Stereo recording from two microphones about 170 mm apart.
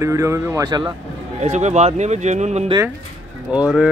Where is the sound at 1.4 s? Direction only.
40° right (ahead or behind).